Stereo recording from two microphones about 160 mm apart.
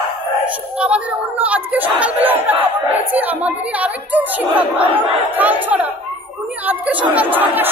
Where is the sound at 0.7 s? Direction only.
10° right (ahead or behind).